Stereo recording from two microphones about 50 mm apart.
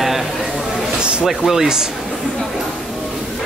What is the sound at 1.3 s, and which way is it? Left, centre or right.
Speech, centre.